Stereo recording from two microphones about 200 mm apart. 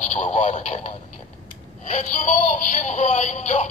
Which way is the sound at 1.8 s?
35° left (ahead or behind).